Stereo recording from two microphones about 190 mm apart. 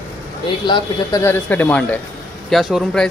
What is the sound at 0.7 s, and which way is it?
Speech, 25° left (ahead or behind).